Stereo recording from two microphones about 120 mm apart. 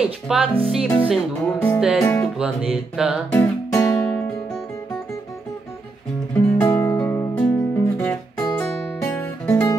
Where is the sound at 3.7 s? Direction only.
20° left (ahead or behind).